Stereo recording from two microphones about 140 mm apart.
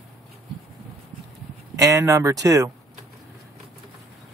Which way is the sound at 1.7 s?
20° right (ahead or behind).